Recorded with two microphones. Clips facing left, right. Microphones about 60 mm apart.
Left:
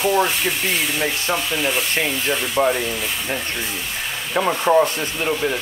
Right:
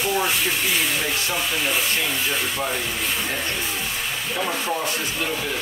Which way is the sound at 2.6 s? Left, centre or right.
Left.